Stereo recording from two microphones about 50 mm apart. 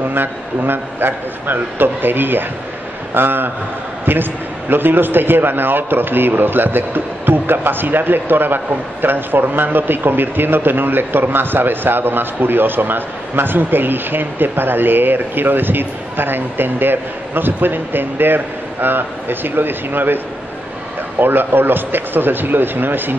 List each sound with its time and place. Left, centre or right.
0.1 s a man's voice: right
21.2 s a man's voice: right